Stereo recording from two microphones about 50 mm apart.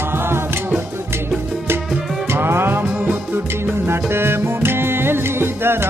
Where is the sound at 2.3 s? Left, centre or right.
Right.